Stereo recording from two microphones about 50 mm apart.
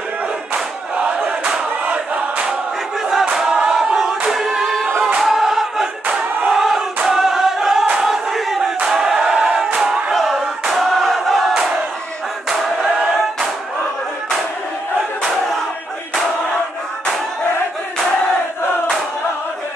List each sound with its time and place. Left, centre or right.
0.9 s battle cry: right
3.3 s a sound: centre
3.6 s choir: centre
7.9 s battle cry: centre
8.8 s choir: centre
9.8 s battle cry: centre